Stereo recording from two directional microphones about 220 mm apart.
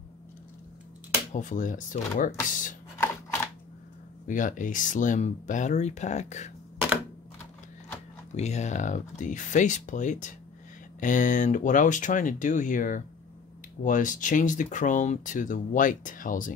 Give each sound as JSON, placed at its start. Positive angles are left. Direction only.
{"t": 1.3, "sound": "speech", "side_deg": 35}
{"t": 4.3, "sound": "speech", "side_deg": 35}
{"t": 8.4, "sound": "speech", "side_deg": 30}